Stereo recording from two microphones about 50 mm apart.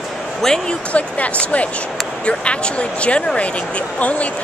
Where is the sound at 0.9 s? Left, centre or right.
Left.